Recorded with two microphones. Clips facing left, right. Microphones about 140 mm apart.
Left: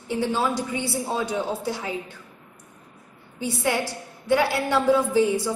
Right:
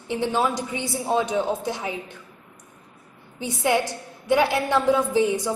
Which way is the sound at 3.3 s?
20° right (ahead or behind).